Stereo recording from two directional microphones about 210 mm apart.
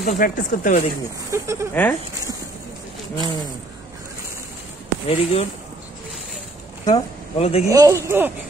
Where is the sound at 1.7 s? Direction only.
10° left (ahead or behind).